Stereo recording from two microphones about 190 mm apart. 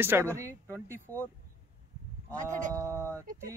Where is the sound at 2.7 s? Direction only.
15° right (ahead or behind).